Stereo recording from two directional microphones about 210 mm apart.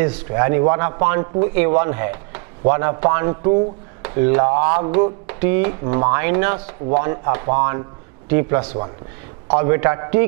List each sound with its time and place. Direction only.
0.0 s speech: 15° right (ahead or behind)
8.5 s a man's voice: 30° right (ahead or behind)
9.6 s speech: 15° right (ahead or behind)